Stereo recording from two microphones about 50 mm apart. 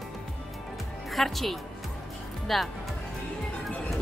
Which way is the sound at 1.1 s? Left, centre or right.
Centre.